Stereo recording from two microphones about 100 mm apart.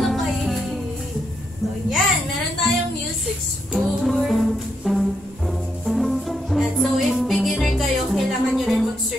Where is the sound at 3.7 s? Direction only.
Centre (ahead or behind).